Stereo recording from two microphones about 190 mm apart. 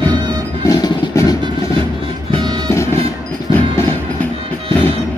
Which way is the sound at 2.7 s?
15° left (ahead or behind).